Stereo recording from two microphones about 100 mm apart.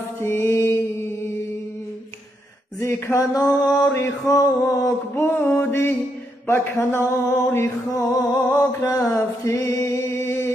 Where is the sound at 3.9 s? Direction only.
30° left (ahead or behind).